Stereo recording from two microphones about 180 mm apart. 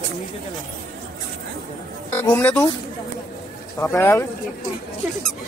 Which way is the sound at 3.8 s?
15° left (ahead or behind).